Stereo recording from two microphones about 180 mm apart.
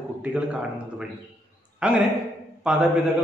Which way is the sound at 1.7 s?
5° right (ahead or behind).